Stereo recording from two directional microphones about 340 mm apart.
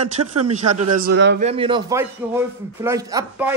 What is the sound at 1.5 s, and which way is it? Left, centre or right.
Speech, centre.